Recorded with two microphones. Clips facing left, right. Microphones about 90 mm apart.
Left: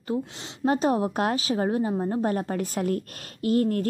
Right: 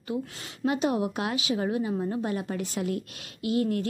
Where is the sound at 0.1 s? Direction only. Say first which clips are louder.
Left 3 dB; 35° left (ahead or behind).